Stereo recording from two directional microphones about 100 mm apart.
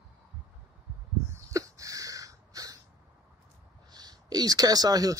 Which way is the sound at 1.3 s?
35° right (ahead or behind).